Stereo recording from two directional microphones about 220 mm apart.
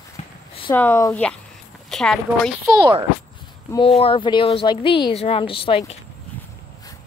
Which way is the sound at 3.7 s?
25° left (ahead or behind).